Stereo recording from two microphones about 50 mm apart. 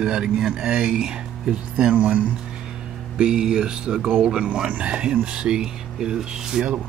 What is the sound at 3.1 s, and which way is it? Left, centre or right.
Speech, centre.